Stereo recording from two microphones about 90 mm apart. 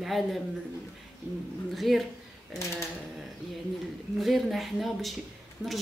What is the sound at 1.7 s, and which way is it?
Speech, centre (ahead or behind).